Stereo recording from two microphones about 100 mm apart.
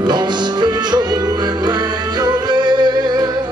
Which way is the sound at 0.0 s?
45° right (ahead or behind).